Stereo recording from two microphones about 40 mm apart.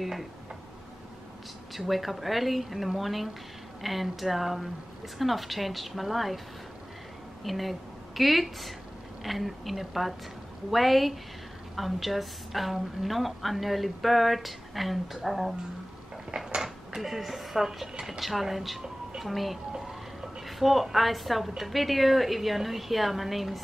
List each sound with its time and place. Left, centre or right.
0.0 s a woman's voice: centre
1.9 s a woman's voice: centre
7.4 s a woman's voice: centre
16.3 s mechanisms: centre
17.0 s a woman's voice: centre
19.7 s a sound: centre
20.4 s a woman's voice: centre